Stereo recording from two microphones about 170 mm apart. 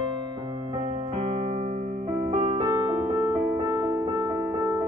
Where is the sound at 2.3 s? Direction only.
30° right (ahead or behind).